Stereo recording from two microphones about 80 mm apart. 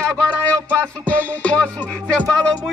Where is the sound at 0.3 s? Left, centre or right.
Centre.